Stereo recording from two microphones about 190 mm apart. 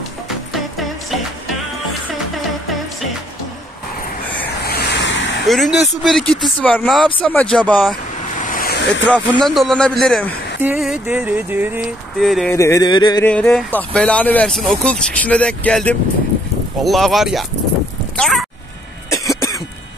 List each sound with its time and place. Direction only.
4.6 s vehicle: 55° left (ahead or behind)
5.5 s speech: centre (ahead or behind)
8.4 s vehicle: 45° left (ahead or behind)
9.0 s speech: 5° left (ahead or behind)
10.6 s a sound: 5° right (ahead or behind)
12.2 s speech: centre (ahead or behind)
12.5 s a sound: 15° left (ahead or behind)
13.2 s speech: 5° left (ahead or behind)
18.1 s a sound: 5° left (ahead or behind)
19.0 s cough: 15° left (ahead or behind)